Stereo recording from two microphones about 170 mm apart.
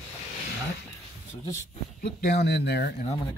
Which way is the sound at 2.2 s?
70° left (ahead or behind).